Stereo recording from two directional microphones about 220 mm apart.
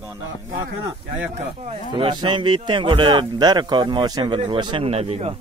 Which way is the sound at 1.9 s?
20° right (ahead or behind).